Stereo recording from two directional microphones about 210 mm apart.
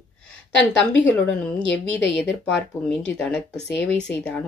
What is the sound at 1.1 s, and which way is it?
Speech, 5° left (ahead or behind).